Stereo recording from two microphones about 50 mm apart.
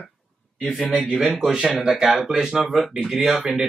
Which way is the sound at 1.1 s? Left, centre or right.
Centre.